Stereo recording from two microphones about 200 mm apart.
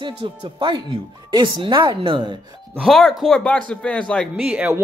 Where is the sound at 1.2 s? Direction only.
25° right (ahead or behind).